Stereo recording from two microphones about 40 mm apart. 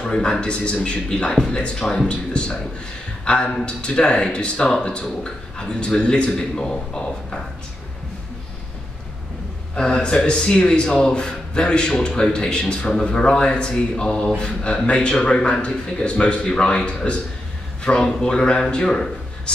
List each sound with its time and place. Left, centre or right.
0.1 s a man's voice: left
1.3 s a man's voice: centre
9.8 s a man's voice: left
17.8 s a man's voice: centre